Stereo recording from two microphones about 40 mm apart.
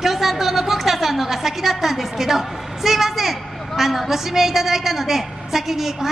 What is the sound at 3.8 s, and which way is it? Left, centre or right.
A woman's voice, centre.